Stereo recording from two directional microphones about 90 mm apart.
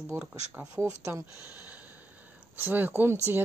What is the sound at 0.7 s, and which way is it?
Speech, 40° right (ahead or behind).